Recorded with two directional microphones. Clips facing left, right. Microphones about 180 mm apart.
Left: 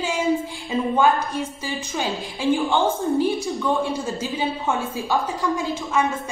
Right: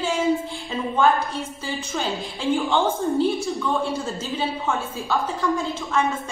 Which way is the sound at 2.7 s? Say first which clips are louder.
Left 1 dB; 15° left (ahead or behind).